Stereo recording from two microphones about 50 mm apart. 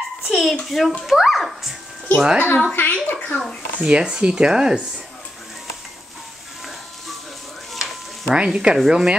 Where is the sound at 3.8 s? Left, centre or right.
Centre.